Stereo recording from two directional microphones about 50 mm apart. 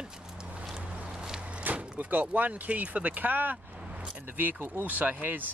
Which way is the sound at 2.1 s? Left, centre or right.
Right.